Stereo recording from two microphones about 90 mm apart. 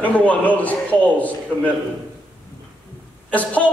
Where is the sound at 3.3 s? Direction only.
15° left (ahead or behind).